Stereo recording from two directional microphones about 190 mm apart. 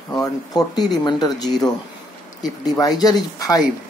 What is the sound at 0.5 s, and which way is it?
Speech, 20° left (ahead or behind).